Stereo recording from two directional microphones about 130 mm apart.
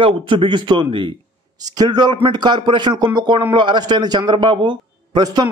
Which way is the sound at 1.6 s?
30° right (ahead or behind).